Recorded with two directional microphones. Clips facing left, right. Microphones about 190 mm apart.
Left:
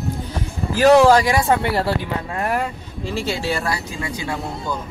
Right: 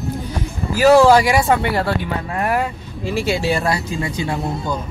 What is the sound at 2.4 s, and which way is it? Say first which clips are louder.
Speech: right 3 dB; 10° right (ahead or behind).